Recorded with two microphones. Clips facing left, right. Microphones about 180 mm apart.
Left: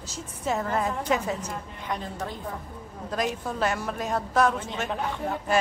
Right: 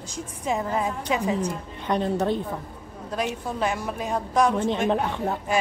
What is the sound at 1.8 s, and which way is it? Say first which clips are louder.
Speech: right 10 dB; 70° right (ahead or behind).